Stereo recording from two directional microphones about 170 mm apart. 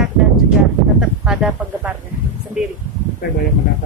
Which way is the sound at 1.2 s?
5° right (ahead or behind).